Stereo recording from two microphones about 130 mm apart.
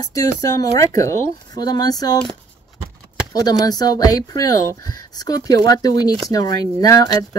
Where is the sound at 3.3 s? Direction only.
30° left (ahead or behind).